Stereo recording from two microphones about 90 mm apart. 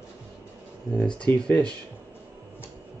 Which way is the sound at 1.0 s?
10° left (ahead or behind).